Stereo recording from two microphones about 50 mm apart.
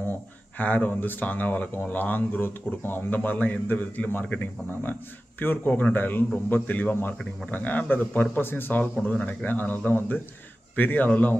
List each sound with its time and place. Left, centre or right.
0.6 s speech: left
9.0 s speech: left